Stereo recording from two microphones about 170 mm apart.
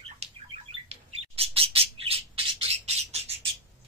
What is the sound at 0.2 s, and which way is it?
Bird, 35° right (ahead or behind).